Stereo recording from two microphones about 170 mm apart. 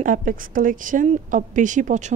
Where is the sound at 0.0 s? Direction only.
50° right (ahead or behind).